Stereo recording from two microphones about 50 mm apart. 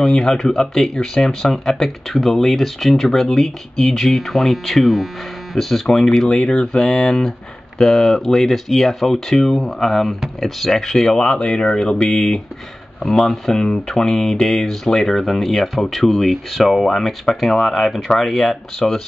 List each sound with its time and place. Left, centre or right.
0.0 s speech: centre
6.4 s speech: left
6.8 s speech: centre